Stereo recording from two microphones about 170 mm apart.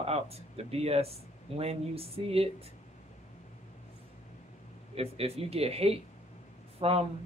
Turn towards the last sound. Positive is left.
turn(degrees=-35)  # may be behind; listen again after turning